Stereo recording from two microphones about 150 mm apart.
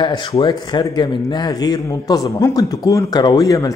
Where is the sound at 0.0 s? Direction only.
30° left (ahead or behind).